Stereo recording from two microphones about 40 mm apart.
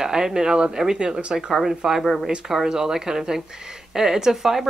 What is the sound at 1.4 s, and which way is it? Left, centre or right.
Speech, centre.